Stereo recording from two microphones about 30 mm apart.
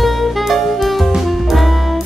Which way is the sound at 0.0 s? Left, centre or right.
Centre.